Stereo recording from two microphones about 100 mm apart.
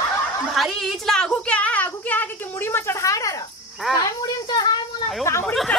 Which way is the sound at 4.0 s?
45° left (ahead or behind).